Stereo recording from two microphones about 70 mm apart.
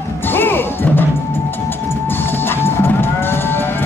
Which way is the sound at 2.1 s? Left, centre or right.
Left.